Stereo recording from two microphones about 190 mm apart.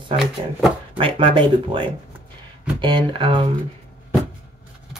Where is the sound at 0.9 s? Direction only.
25° right (ahead or behind).